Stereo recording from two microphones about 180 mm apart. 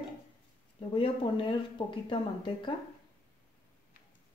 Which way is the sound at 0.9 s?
30° left (ahead or behind).